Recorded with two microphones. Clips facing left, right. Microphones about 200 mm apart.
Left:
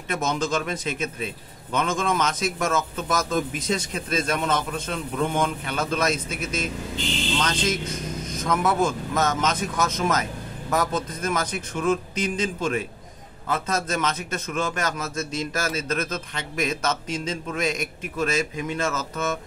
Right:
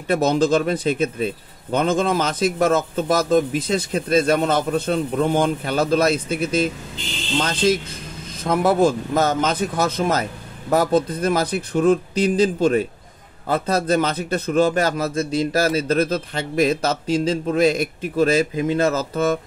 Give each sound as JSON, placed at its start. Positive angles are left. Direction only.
{"t": 0.1, "sound": "speech", "side_deg": -30}